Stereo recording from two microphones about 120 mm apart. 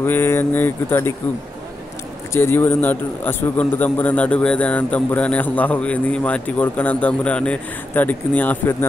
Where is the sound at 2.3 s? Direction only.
20° left (ahead or behind).